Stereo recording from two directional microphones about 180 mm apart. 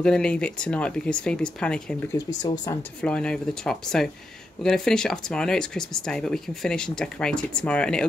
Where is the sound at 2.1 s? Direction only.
20° left (ahead or behind).